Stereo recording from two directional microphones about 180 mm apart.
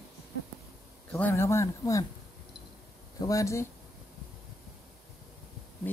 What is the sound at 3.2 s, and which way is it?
Speech, 20° left (ahead or behind).